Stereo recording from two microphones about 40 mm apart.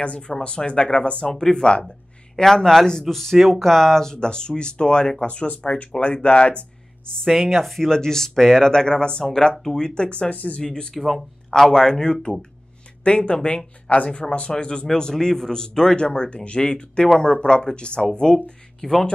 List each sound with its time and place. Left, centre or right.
0.0 s a man's voice: left
1.2 s a man's voice: centre
7.2 s speech: centre
7.9 s a man's voice: centre; by 10.6 s left
10.6 s speech: centre
11.0 s speech: centre
11.7 s a man's voice: centre
18.8 s speech: centre